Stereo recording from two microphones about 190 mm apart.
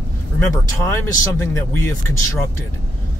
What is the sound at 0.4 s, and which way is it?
A man's voice, 15° left (ahead or behind).